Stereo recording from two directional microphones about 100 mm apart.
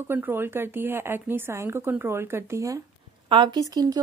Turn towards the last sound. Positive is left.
turn(degrees=-35)  # may be behind; listen again after turning